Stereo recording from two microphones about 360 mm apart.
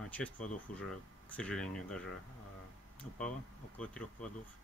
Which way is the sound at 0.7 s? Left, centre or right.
Left.